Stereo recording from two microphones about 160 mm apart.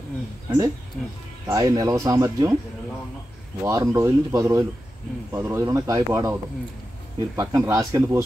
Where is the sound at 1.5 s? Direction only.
25° right (ahead or behind).